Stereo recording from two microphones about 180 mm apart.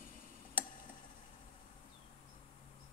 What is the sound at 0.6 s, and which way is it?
Tick-tock, 10° right (ahead or behind).